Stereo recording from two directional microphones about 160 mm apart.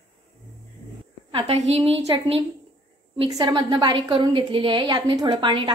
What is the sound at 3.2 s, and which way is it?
A woman's voice, 25° right (ahead or behind).